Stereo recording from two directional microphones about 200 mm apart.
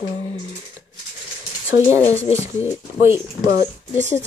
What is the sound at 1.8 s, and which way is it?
Speech, 15° right (ahead or behind).